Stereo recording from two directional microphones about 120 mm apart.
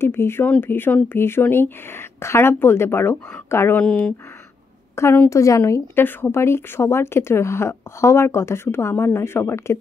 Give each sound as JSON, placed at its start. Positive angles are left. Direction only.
{"t": 0.0, "sound": "a woman's voice", "side_deg": 20}
{"t": 4.9, "sound": "a woman's voice", "side_deg": 20}